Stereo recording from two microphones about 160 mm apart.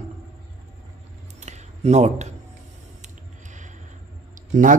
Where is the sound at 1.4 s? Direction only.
45° right (ahead or behind).